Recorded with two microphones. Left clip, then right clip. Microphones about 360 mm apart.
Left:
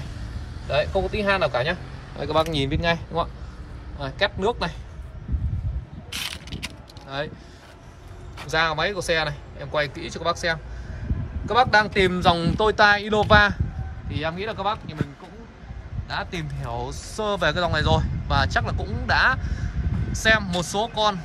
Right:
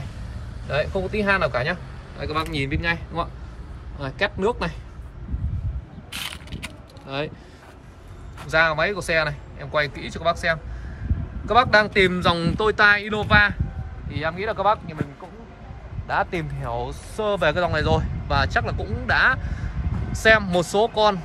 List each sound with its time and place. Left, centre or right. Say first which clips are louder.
0.7 s speech: left 2 dB; centre
6.0 s mechanisms: left 1 dB; centre
8.5 s speech: right 3 dB; centre
16.1 s speech: right 6 dB; centre